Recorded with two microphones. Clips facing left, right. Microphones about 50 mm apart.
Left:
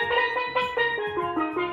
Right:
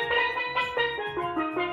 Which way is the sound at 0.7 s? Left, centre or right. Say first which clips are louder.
Left 3 dB; centre.